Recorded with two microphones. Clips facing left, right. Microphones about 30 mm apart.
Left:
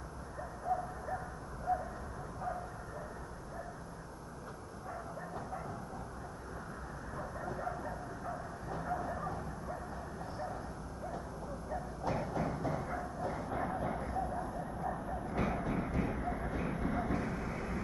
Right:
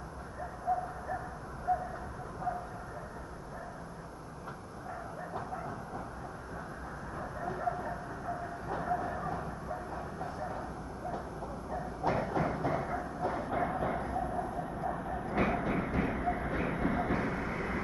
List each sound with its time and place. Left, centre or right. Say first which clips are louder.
0.7 s a sound: right 3 dB; right
1.7 s vehicle: right 3 dB; centre
7.2 s train: right 3 dB; centre
9.8 s bow-wow: right 4 dB; right
11.7 s bow-wow: right 5 dB; right